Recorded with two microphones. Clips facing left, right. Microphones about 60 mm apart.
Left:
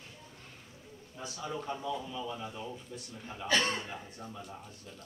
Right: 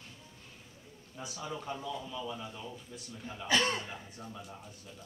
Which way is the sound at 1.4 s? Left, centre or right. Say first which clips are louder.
Left 2 dB; centre.